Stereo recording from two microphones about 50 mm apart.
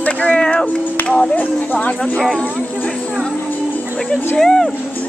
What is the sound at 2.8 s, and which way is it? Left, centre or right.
Vehicle, centre.